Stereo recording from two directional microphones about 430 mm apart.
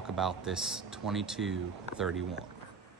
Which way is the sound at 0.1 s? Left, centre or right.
Centre.